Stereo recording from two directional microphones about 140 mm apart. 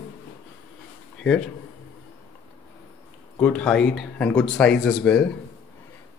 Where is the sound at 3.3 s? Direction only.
10° left (ahead or behind).